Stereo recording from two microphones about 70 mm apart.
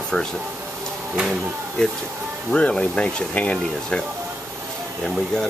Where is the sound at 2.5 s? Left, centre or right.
Centre.